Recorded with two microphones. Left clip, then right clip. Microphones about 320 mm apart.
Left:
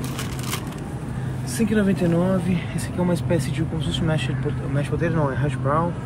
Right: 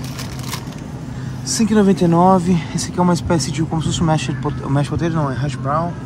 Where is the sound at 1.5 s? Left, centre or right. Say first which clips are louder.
Right 7 dB; centre.